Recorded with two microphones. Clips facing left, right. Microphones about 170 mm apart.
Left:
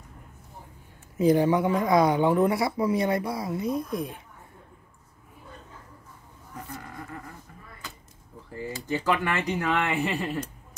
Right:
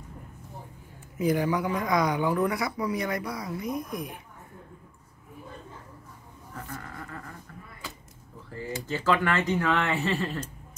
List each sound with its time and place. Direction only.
1.1 s speech: 25° left (ahead or behind)
8.8 s speech: 15° left (ahead or behind)